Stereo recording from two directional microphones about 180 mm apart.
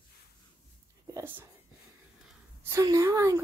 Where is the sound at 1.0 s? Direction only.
15° right (ahead or behind).